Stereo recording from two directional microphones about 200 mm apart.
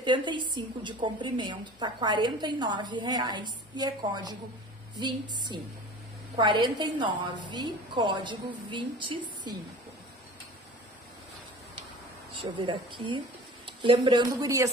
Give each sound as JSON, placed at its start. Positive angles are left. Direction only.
{"t": 0.0, "sound": "a woman's voice", "side_deg": -25}
{"t": 12.4, "sound": "a woman's voice", "side_deg": -25}